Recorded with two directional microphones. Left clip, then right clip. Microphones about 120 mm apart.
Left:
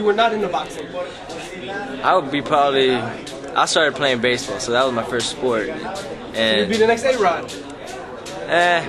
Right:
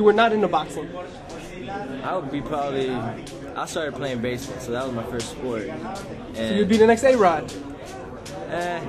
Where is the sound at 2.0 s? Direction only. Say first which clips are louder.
Left 12 dB; 25° left (ahead or behind).